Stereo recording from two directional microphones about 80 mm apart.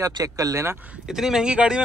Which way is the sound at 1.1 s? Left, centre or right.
Centre.